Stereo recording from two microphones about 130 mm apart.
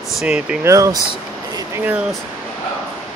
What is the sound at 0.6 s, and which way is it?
Speech, 25° right (ahead or behind).